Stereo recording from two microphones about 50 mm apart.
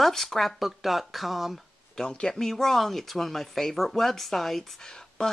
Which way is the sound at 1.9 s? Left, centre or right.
Centre.